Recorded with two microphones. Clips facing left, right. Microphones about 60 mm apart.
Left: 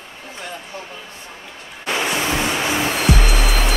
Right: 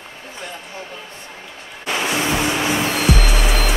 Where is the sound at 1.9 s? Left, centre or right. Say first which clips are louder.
Even; centre.